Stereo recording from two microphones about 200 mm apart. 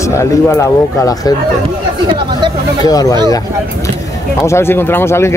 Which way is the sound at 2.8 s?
20° left (ahead or behind).